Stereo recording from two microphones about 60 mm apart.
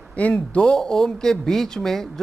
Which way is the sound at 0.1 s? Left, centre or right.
Left.